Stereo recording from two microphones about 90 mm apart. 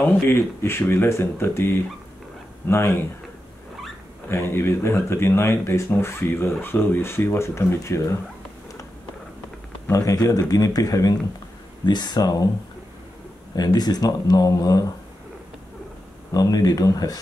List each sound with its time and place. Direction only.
0.0 s speech: 25° left (ahead or behind)
4.3 s speech: 25° left (ahead or behind)
9.9 s speech: 40° left (ahead or behind)
11.8 s speech: 55° left (ahead or behind)
13.6 s speech: 50° left (ahead or behind)
16.3 s speech: 45° left (ahead or behind)